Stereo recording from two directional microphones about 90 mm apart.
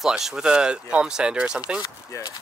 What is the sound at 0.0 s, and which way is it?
Speech, 5° right (ahead or behind).